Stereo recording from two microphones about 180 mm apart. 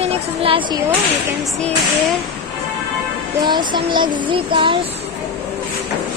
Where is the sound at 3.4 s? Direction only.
25° right (ahead or behind).